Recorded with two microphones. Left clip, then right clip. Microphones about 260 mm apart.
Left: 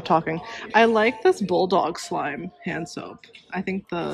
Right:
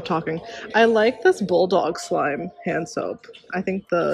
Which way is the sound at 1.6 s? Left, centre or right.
Left.